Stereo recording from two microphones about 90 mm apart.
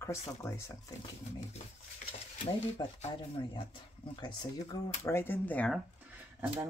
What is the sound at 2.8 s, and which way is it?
Speech, 55° left (ahead or behind).